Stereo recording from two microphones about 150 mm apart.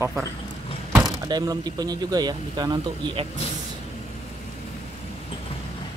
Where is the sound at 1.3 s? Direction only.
25° right (ahead or behind).